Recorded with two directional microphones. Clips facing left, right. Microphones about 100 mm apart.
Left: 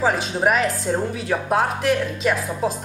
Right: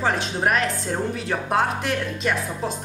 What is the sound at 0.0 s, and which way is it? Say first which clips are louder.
Speech: left 3 dB; 5° left (ahead or behind).